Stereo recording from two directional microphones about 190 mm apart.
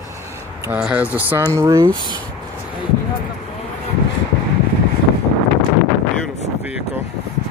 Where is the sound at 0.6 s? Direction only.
5° right (ahead or behind).